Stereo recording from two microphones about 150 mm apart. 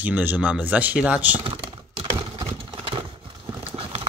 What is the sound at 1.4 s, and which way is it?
Typing, 40° right (ahead or behind).